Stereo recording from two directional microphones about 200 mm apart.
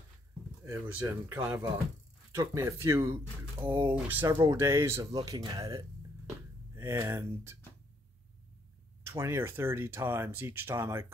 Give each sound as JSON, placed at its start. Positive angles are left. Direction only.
{"t": 0.7, "sound": "speech", "side_deg": -10}
{"t": 3.6, "sound": "speech", "side_deg": -25}
{"t": 3.9, "sound": "speech", "side_deg": -10}
{"t": 9.0, "sound": "speech", "side_deg": -15}